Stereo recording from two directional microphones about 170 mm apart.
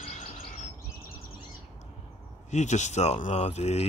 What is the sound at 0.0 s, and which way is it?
Chirp, 40° left (ahead or behind).